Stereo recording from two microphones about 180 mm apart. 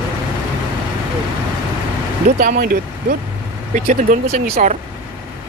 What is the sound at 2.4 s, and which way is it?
Speech, 55° right (ahead or behind).